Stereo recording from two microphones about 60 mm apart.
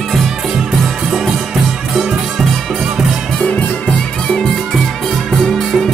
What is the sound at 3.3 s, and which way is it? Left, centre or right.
Music, centre.